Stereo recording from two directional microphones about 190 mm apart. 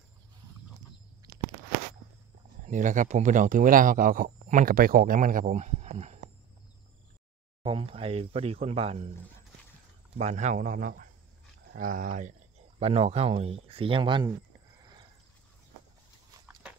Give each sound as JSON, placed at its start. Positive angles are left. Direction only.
{"t": 2.6, "sound": "speech", "side_deg": -40}
{"t": 7.6, "sound": "speech", "side_deg": -30}
{"t": 10.1, "sound": "speech", "side_deg": -35}